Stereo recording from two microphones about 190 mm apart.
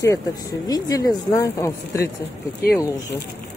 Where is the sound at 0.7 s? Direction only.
20° left (ahead or behind).